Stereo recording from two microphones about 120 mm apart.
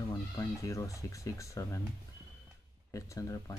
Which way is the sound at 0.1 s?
30° left (ahead or behind).